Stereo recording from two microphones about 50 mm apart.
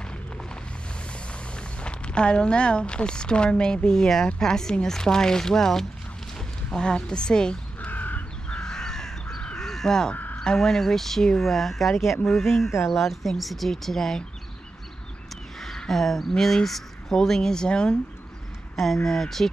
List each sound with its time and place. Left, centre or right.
1.8 s speech: left
7.8 s crow: left
8.5 s crow: centre
10.3 s speech: centre
15.6 s speech: centre
18.9 s speech: centre